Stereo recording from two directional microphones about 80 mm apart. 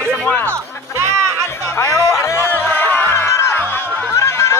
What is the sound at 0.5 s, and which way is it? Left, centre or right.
Music, right.